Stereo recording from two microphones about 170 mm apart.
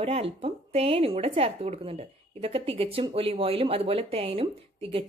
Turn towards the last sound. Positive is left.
turn(degrees=-35)  # may be behind; listen again after turning